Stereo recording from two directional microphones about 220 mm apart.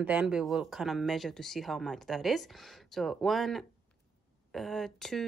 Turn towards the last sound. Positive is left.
turn(degrees=0)  # may be behind; listen again after turning